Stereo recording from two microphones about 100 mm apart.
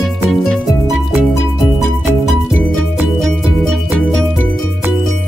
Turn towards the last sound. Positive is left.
turn(degrees=5)  # may be behind; listen again after turning